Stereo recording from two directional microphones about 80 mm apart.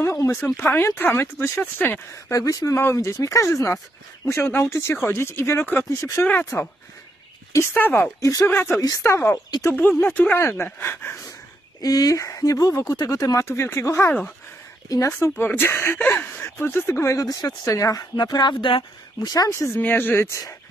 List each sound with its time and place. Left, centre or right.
0.0 s speech: left
2.3 s speech: left
2.8 s speech: left
4.4 s speech: left
5.9 s speech: left
7.7 s speech: left
8.2 s speech: left
8.5 s speech: left
11.8 s speech: left
18.1 s speech: left
19.2 s speech: left
19.5 s speech: left
19.8 s speech: left